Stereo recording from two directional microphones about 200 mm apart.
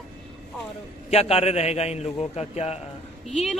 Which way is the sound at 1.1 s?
30° left (ahead or behind).